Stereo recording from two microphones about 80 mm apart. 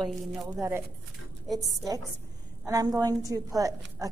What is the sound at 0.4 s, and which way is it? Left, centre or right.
Speech, right.